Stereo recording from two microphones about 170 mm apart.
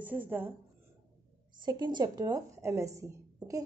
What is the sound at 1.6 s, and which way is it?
A woman's voice, 25° right (ahead or behind).